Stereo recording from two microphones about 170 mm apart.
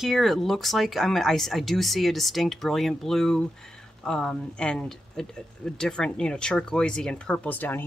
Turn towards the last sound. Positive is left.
turn(degrees=10)  # may be behind; listen again after turning